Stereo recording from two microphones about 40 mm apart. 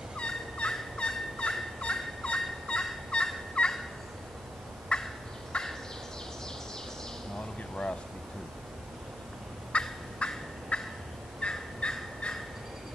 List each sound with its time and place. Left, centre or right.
0.2 s fowl: left
4.9 s fowl: left
5.5 s turkey: left
9.7 s fowl: left